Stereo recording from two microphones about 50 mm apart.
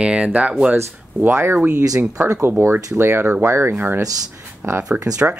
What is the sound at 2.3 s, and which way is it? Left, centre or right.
Speech, right.